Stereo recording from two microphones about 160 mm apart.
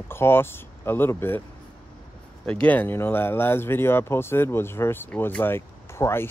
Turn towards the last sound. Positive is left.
turn(degrees=15)  # may be behind; listen again after turning